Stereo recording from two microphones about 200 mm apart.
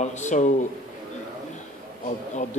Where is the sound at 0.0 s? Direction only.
35° left (ahead or behind).